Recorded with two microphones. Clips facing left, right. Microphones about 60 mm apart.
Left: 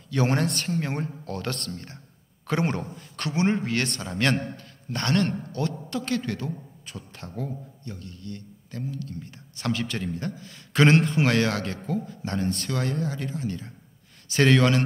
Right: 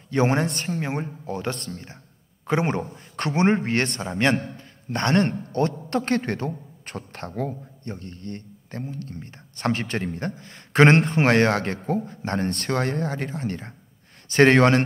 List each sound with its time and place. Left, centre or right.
0.1 s a man's voice: right
3.2 s a man's voice: right